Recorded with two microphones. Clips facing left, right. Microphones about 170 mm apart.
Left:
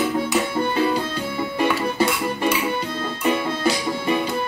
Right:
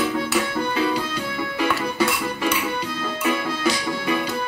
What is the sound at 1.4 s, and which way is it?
Music, 25° left (ahead or behind).